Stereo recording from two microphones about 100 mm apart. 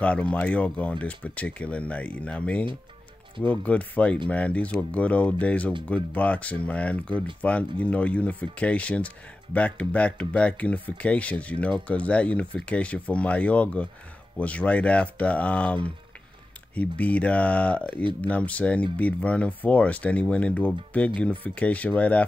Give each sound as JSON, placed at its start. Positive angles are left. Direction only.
{"t": 0.0, "sound": "speech", "side_deg": 15}